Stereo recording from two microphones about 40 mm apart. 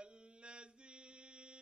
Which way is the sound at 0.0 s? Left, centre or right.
Right.